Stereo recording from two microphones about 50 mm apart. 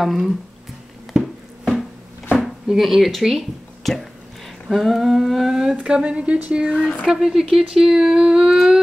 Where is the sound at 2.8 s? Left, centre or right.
Centre; by 6.8 s right.